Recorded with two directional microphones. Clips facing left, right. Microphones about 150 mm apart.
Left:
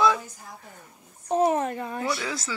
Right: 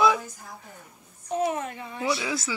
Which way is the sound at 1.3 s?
40° left (ahead or behind).